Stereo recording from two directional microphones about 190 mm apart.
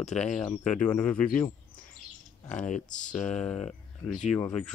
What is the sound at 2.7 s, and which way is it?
Speech, 40° left (ahead or behind).